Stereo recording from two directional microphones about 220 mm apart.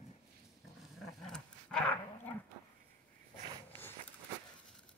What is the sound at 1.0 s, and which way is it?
Dog, centre (ahead or behind).